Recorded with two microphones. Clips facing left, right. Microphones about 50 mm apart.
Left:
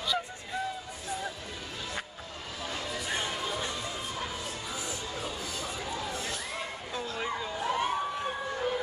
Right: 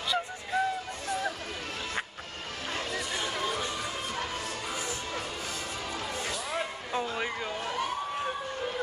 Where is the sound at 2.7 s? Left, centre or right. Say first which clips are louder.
Right 3 dB; right.